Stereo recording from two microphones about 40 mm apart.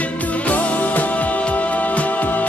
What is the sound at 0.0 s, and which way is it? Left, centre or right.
Music, left.